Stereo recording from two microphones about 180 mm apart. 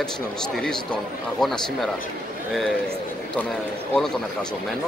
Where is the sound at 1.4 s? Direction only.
Centre (ahead or behind).